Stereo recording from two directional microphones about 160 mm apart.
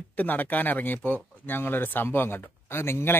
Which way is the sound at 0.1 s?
10° left (ahead or behind).